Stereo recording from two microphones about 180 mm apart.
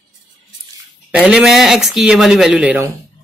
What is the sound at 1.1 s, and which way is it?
Speech, 5° right (ahead or behind).